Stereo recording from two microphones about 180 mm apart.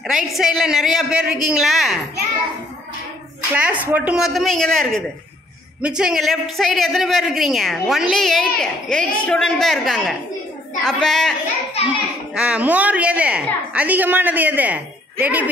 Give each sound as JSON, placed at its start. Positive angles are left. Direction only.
{"t": 0.1, "sound": "a woman's voice", "side_deg": 0}
{"t": 3.5, "sound": "a woman's voice", "side_deg": -10}
{"t": 12.4, "sound": "a woman's voice", "side_deg": -5}